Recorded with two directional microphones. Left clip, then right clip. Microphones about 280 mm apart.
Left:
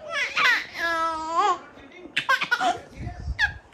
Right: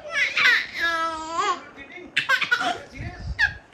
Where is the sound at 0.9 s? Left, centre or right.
Centre.